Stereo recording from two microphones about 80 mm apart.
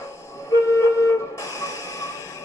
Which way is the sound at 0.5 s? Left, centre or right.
Left.